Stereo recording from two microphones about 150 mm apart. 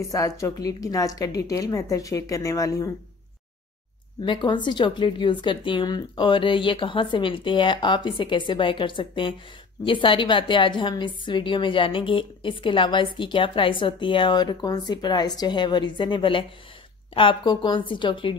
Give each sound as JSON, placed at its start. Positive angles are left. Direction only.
{"t": 0.1, "sound": "a woman's voice", "side_deg": 20}
{"t": 4.2, "sound": "a woman's voice", "side_deg": 30}